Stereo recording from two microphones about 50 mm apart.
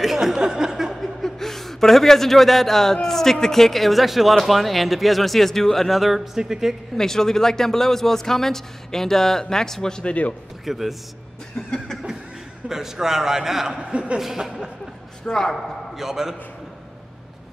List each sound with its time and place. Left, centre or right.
0.0 s a sound: centre
1.0 s speech: centre
7.0 s speech: centre
10.6 s a man's voice: centre
12.6 s a man's voice: centre
13.7 s a man's voice: right
15.2 s speech: centre
15.9 s a man's voice: centre